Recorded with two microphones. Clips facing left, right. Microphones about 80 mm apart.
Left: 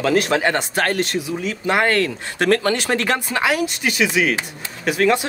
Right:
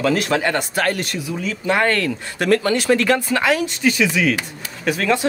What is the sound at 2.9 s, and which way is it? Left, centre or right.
Speech, left.